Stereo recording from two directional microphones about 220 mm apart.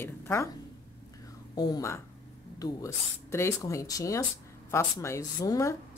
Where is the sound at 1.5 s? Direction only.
15° left (ahead or behind).